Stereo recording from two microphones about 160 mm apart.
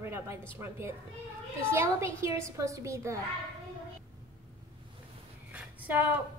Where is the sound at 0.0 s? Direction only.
15° right (ahead or behind).